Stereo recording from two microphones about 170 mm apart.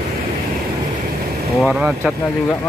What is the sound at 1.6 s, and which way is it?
Speech, 5° right (ahead or behind).